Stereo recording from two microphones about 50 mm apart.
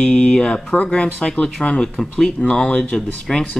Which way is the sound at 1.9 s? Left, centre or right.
Centre.